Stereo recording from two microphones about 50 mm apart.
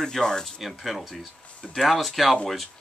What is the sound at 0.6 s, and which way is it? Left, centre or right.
Speech, centre.